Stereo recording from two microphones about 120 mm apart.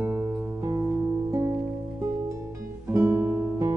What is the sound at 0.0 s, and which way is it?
Music, 20° right (ahead or behind).